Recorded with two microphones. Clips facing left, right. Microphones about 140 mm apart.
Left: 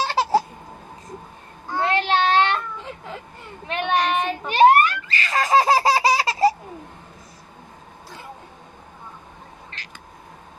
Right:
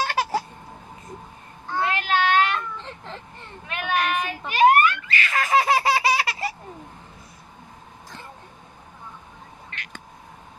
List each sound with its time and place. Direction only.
0.0 s a sound: 30° left (ahead or behind)
1.8 s child singing: 30° left (ahead or behind)
2.8 s vehicle: 5° left (ahead or behind)
3.6 s child singing: 30° left (ahead or behind)
4.5 s baby laughter: 35° left (ahead or behind)
9.7 s a sound: 30° left (ahead or behind)